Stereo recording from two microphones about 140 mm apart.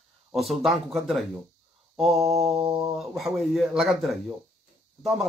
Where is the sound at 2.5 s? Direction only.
45° right (ahead or behind).